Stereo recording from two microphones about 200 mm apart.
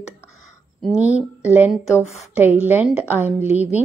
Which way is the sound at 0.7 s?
Centre (ahead or behind).